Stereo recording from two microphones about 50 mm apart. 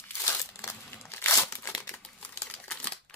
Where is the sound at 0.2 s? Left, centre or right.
Left.